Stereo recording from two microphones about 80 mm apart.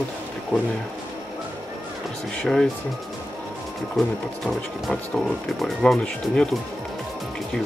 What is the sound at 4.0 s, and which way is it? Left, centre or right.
Speech, centre.